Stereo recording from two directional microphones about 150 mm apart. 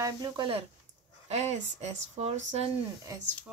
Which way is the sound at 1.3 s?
45° right (ahead or behind).